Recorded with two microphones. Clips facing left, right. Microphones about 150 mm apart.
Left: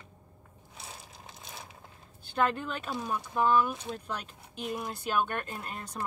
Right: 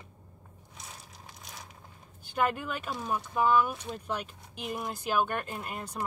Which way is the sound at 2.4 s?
10° right (ahead or behind).